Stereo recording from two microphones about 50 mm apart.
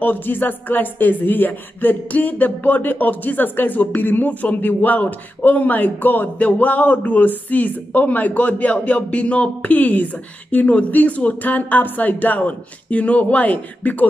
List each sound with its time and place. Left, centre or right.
0.0 s speech: left